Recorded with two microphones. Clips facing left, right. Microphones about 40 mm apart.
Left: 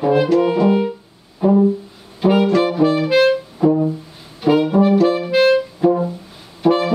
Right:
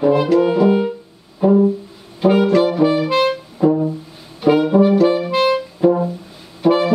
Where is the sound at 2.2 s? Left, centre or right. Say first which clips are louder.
Right 1 dB; centre.